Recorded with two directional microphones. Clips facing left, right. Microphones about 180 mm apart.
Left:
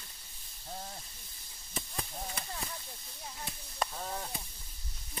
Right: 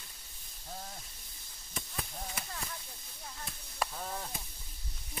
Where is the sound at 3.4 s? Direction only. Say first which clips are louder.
Left 1 dB; 5° left (ahead or behind).